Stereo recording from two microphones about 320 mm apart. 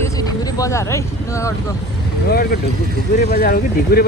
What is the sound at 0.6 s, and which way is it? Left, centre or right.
Speech, centre.